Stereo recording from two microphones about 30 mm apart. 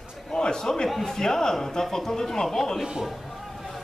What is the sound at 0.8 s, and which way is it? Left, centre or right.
Speech, centre.